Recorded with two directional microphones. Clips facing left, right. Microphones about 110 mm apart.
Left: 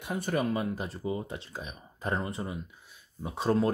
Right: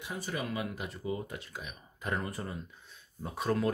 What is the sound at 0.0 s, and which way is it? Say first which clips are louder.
Speech: left 7 dB; 55° left (ahead or behind).